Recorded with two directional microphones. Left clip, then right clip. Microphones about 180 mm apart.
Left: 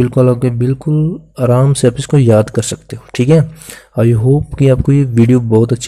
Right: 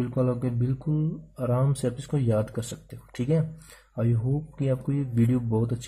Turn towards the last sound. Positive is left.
turn(degrees=30)  # may be behind; listen again after turning